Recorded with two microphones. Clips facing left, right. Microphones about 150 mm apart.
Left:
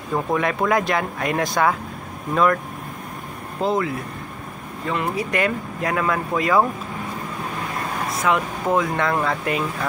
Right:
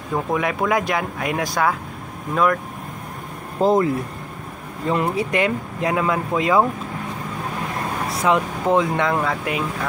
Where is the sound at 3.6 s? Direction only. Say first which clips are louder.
Right 5 dB; 40° right (ahead or behind); by 6.7 s 15° right (ahead or behind).